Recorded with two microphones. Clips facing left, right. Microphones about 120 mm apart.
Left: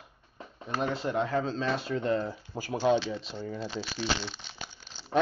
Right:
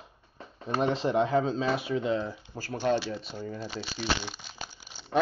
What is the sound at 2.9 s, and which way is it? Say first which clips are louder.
Speech: left 1 dB; 5° right (ahead or behind).